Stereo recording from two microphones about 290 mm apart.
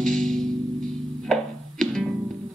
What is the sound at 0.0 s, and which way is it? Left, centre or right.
Music, centre.